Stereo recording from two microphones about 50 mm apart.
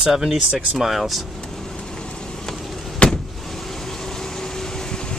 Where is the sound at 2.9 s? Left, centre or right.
Left.